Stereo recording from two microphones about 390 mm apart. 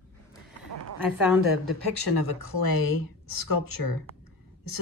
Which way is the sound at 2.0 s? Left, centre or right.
Left.